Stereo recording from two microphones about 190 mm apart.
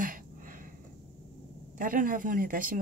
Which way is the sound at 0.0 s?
45° right (ahead or behind).